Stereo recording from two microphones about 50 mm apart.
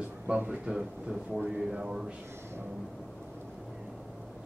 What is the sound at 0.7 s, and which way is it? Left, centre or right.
Speech, centre.